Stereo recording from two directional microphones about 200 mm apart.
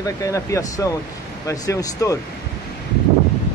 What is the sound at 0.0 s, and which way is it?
Speech, 15° left (ahead or behind).